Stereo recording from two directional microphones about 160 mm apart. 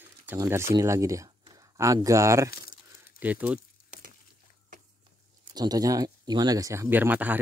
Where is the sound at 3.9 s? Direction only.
50° right (ahead or behind).